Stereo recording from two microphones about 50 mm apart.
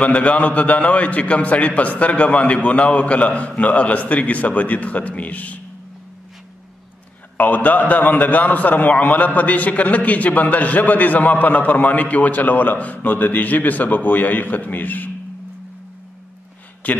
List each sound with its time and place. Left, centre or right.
0.0 s a man's voice: left
7.3 s a man's voice: left
16.8 s speech: left